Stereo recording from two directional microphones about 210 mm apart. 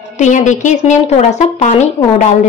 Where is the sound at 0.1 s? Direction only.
35° left (ahead or behind).